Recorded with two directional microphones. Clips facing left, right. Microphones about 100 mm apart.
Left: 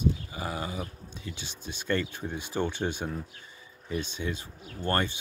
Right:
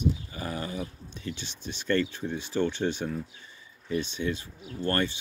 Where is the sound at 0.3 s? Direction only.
15° left (ahead or behind).